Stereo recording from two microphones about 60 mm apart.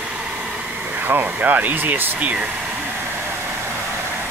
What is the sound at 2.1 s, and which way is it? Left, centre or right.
Speech, right.